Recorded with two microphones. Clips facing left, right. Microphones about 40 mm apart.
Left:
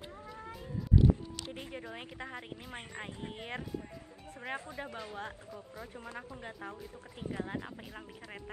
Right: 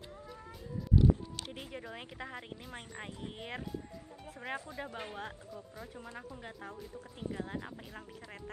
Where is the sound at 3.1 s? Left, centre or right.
Left.